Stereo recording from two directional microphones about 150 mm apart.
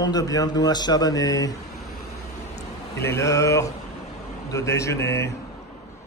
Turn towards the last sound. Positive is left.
turn(degrees=20)  # may be behind; listen again after turning